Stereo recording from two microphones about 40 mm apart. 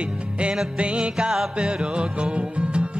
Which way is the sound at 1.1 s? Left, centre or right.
Centre.